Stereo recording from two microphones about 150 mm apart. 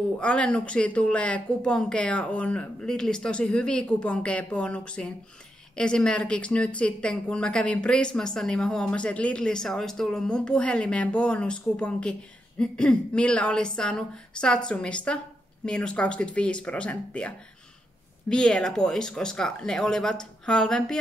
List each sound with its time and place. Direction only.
0.2 s a woman's voice: 10° left (ahead or behind)
18.3 s speech: 5° left (ahead or behind)